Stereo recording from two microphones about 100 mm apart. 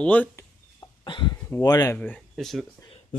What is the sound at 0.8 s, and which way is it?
Cough, 50° left (ahead or behind).